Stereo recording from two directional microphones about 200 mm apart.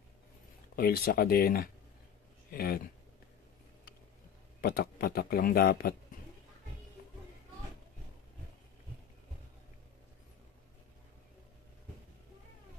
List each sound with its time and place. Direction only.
0.7 s speech: 50° left (ahead or behind)
4.6 s speech: 50° left (ahead or behind)